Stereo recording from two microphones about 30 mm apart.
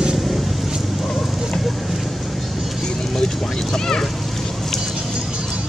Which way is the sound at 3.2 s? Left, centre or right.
Left.